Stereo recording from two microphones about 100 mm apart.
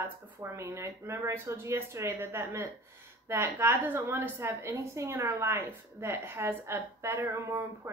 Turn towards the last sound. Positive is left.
turn(degrees=-25)  # may be behind; listen again after turning